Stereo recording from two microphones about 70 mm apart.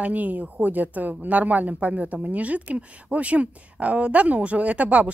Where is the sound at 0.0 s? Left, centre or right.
Right.